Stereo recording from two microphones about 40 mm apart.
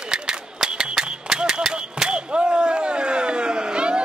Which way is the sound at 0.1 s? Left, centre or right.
Centre.